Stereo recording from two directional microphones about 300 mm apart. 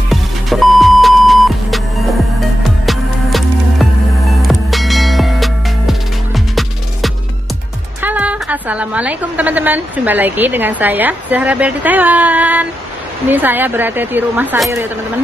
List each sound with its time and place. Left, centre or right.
0.1 s music: centre
8.0 s a woman's voice: centre